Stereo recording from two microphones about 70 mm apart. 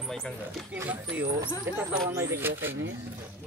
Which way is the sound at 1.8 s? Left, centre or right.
Right.